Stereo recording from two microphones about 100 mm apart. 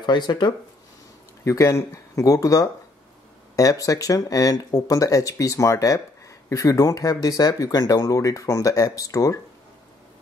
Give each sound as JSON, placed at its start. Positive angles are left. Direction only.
{"t": 0.0, "sound": "speech", "side_deg": 45}
{"t": 1.4, "sound": "speech", "side_deg": 30}